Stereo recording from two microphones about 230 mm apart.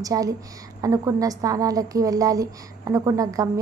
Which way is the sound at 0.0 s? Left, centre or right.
Centre.